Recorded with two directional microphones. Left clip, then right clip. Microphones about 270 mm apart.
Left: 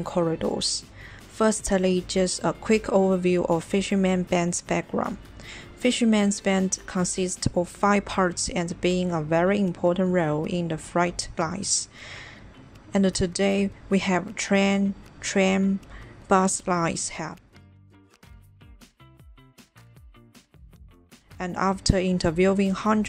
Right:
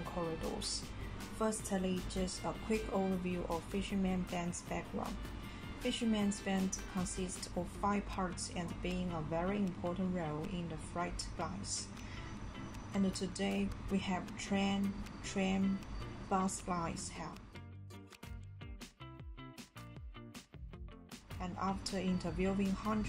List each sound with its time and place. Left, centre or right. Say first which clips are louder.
0.6 s a woman's voice: left 14 dB; left
5.9 s a woman's voice: left 14 dB; left
12.9 s a woman's voice: left 16 dB; left
21.4 s a woman's voice: left 14 dB; left